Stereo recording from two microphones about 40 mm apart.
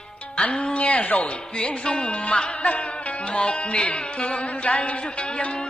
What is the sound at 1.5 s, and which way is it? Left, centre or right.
Music, left.